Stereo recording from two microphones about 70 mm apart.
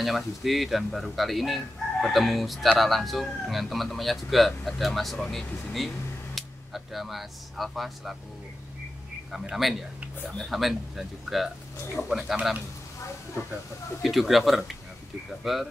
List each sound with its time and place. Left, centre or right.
0.0 s speech: centre
9.3 s speech: centre
14.0 s speech: centre